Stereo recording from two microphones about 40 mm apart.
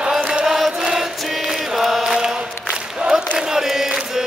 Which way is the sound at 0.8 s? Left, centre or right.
Centre.